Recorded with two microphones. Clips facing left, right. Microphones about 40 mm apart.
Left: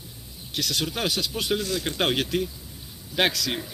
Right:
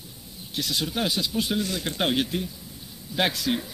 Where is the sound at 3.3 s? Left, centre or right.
Left.